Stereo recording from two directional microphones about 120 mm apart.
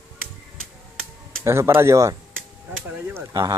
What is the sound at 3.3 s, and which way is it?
Speech, 30° right (ahead or behind).